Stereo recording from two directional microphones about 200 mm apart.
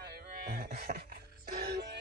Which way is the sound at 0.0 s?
55° right (ahead or behind).